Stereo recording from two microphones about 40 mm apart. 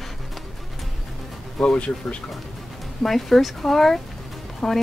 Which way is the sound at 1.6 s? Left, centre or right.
Centre.